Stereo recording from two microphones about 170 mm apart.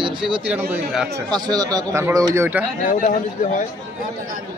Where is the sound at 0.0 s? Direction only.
30° right (ahead or behind).